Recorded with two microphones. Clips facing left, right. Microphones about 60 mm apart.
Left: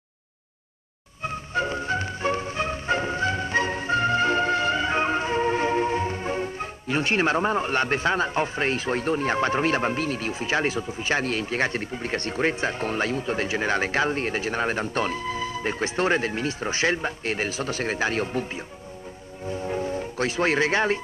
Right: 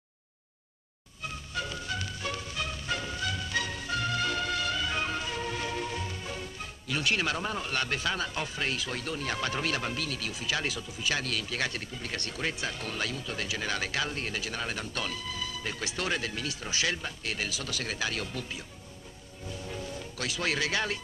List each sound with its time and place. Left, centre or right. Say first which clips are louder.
1.2 s music: left 9 dB; left
19.4 s speech: left 11 dB; left